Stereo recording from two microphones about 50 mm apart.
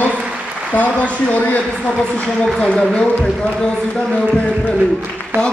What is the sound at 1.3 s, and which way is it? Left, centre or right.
A man's voice, left.